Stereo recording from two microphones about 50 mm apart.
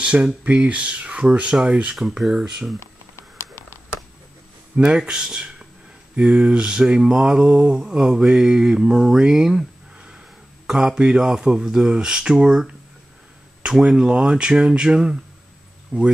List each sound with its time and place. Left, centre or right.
0.0 s speech: right
2.0 s speech: centre
3.3 s a sound: left
4.7 s speech: centre
10.7 s speech: centre